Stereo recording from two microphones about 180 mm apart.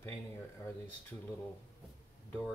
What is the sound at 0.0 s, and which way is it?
Speech, 15° left (ahead or behind).